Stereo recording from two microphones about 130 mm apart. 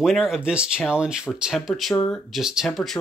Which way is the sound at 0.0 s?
Centre (ahead or behind).